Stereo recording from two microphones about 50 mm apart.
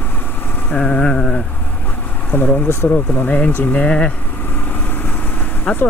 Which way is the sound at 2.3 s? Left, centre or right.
Left.